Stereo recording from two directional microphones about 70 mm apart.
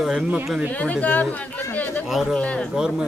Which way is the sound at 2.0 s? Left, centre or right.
Centre.